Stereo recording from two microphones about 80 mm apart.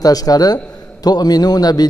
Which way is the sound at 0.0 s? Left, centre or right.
Left.